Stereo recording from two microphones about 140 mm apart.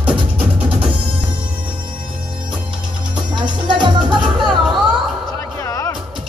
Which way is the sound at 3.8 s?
35° right (ahead or behind).